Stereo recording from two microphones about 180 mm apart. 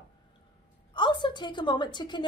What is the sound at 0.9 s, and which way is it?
A woman's voice, 25° left (ahead or behind).